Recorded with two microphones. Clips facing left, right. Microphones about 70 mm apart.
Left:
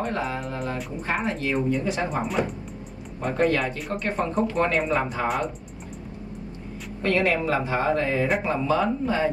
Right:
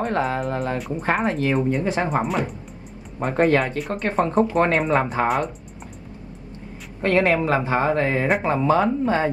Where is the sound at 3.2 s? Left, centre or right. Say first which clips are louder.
Right 4 dB; right.